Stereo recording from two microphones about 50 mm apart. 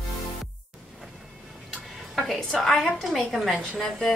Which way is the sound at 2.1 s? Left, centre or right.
Centre.